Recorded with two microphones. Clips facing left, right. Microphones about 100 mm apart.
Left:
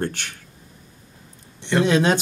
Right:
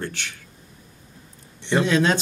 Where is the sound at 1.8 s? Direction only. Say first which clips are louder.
Left 3 dB; 15° left (ahead or behind).